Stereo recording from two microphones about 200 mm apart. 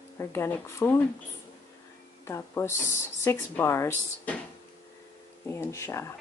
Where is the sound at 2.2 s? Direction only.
15° left (ahead or behind).